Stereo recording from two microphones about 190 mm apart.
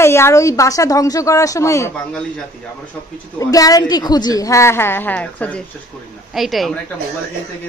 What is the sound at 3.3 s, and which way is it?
A woman's voice, 20° left (ahead or behind).